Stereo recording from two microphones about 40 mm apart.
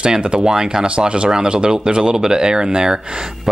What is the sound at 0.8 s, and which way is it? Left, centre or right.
Speech, right.